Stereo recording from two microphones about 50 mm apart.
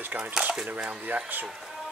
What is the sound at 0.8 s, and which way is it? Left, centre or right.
Speech, right.